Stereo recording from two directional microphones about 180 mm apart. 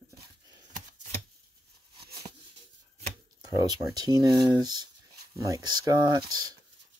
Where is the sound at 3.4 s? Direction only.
20° right (ahead or behind).